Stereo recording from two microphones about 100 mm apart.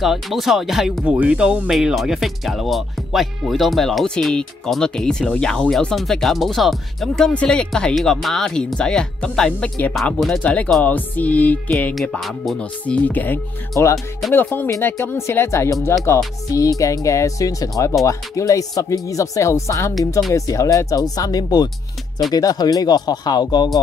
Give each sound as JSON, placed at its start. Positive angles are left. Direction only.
{"t": 0.0, "sound": "speech", "side_deg": 0}
{"t": 10.4, "sound": "music", "side_deg": 15}
{"t": 11.7, "sound": "speech", "side_deg": 5}
{"t": 12.5, "sound": "music", "side_deg": 15}
{"t": 14.3, "sound": "speech", "side_deg": 20}